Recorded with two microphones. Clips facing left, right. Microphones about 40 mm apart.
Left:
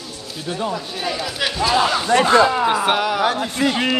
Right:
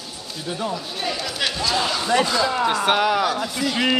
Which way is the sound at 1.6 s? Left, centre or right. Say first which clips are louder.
Left 7 dB; centre.